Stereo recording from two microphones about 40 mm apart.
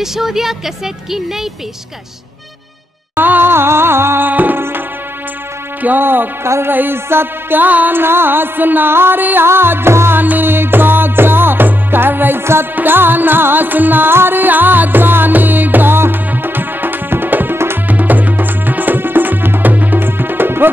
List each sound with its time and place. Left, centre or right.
0.0 s speech: centre
3.2 s music: right
3.5 s music: right
4.3 s music: right
5.8 s speech: right
6.0 s music: right
8.0 s music: right
8.9 s music: right
10.2 s music: right
12.7 s music: right
19.7 s music: right
20.0 s music: right